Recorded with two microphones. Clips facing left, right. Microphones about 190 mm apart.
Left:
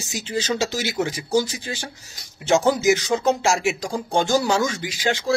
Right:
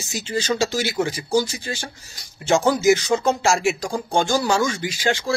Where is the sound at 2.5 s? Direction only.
20° left (ahead or behind).